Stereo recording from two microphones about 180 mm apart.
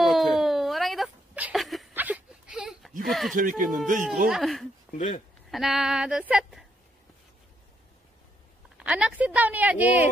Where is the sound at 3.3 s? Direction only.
50° right (ahead or behind).